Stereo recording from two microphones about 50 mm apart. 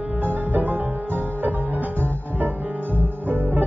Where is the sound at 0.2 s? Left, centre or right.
Right.